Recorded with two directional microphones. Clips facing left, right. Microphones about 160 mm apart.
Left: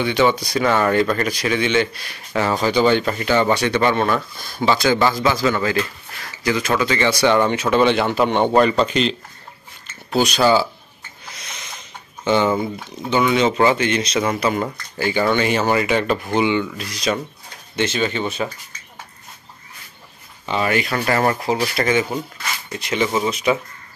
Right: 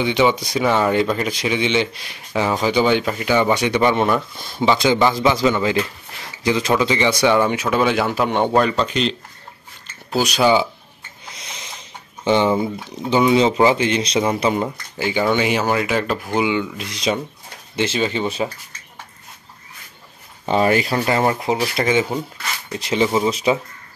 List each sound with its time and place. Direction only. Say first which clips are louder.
0.0 s a man's voice: even; 15° right (ahead or behind); by 9.1 s centre (ahead or behind)
10.1 s speech: even; 10° right (ahead or behind)
11.3 s snort: right 1 dB; 25° right (ahead or behind)
12.3 s speech: right 1 dB; 25° right (ahead or behind)
14.6 s a man's voice: even; 15° right (ahead or behind)
16.7 s speech: right 1 dB; 25° right (ahead or behind)
20.4 s speech: right 4 dB; 35° right (ahead or behind)
21.0 s speech: even; 20° right (ahead or behind)